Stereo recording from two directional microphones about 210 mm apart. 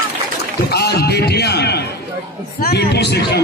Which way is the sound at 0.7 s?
50° left (ahead or behind).